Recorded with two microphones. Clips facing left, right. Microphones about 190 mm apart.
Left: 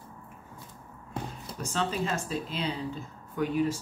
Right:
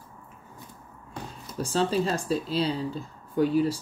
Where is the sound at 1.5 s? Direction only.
35° right (ahead or behind).